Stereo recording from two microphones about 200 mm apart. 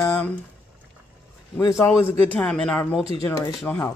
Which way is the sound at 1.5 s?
15° left (ahead or behind).